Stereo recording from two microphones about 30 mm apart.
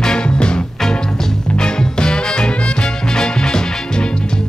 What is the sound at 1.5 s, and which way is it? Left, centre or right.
Music, left.